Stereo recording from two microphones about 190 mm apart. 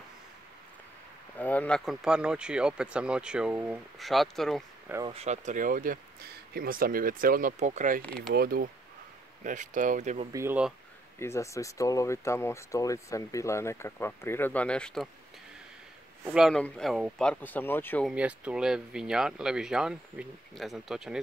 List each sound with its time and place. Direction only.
1.4 s speech: 10° left (ahead or behind)
5.0 s speech: 35° right (ahead or behind)
8.0 s speech: 5° left (ahead or behind)
8.4 s speech: 50° right (ahead or behind)
9.4 s speech: 40° right (ahead or behind)
10.3 s speech: 10° right (ahead or behind)
11.1 s speech: 15° left (ahead or behind)
16.3 s speech: centre (ahead or behind)
18.0 s speech: 5° right (ahead or behind)